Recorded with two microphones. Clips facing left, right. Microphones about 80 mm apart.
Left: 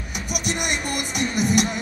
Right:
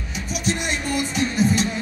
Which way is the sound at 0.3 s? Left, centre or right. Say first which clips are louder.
Right 1 dB; left.